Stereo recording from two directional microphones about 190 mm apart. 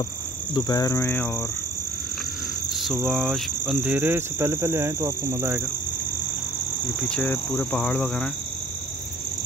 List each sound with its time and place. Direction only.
0.6 s cricket: 20° left (ahead or behind)
2.7 s cricket: centre (ahead or behind)
7.0 s cricket: 5° left (ahead or behind)